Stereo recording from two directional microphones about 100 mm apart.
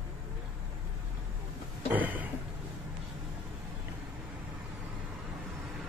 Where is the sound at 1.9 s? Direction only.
15° right (ahead or behind).